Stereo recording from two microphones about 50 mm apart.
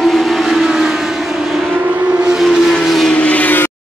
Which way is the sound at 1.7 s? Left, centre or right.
Right.